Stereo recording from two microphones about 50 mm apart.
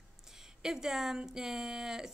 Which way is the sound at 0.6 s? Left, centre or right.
Centre.